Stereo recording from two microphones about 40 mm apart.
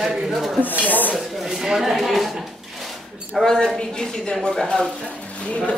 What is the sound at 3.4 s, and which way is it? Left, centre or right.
A woman's voice, centre.